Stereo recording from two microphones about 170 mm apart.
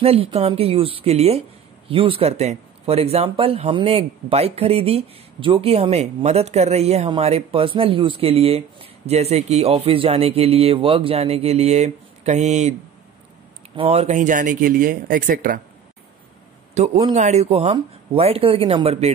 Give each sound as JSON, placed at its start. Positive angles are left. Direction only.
{"t": 0.0, "sound": "speech", "side_deg": -35}
{"t": 13.7, "sound": "speech", "side_deg": -40}
{"t": 16.7, "sound": "speech", "side_deg": -40}